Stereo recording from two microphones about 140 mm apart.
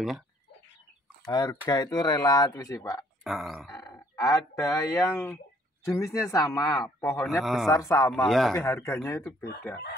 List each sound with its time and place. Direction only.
1.2 s speech: 25° left (ahead or behind)
3.3 s speech: centre (ahead or behind)
3.8 s a man's voice: 25° left (ahead or behind)
8.1 s speech: centre (ahead or behind)
8.5 s speech: 20° left (ahead or behind)